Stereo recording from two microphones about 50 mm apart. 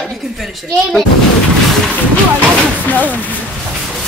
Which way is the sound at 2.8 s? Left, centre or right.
Left.